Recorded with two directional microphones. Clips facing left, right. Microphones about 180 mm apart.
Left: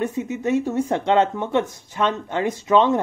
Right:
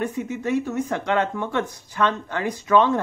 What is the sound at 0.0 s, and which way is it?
Speech, 20° left (ahead or behind).